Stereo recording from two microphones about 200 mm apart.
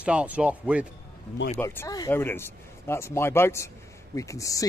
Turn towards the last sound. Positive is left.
turn(degrees=15)  # may be behind; listen again after turning